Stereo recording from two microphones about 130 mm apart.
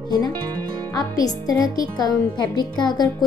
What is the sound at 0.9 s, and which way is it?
A woman's voice, 30° left (ahead or behind).